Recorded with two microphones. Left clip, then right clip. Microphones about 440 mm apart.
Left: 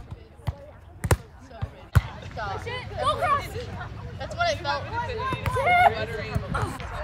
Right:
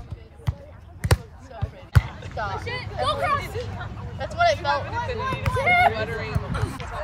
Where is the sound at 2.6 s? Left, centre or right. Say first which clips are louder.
Left 1 dB; centre.